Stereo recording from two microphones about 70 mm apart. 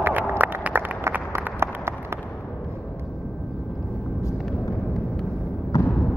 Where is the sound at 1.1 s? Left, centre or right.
Right.